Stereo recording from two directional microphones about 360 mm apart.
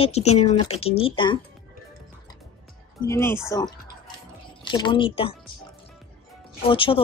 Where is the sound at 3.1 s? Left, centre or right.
Centre.